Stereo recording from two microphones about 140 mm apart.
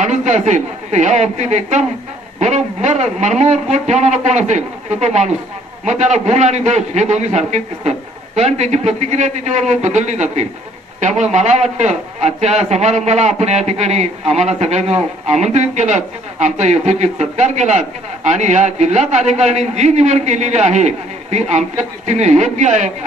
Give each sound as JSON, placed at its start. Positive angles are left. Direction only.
{"t": 0.0, "sound": "a man's voice", "side_deg": -55}